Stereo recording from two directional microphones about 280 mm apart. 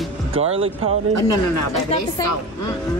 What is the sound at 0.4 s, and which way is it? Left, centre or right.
Speech, right.